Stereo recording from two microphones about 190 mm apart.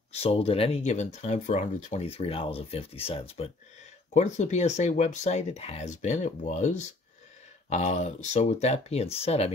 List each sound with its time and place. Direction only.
0.1 s speech: 35° left (ahead or behind)